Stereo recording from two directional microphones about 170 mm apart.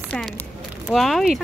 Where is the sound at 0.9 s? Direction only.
Centre (ahead or behind).